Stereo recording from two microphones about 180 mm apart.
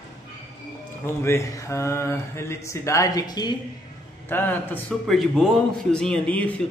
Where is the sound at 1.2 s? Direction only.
15° left (ahead or behind).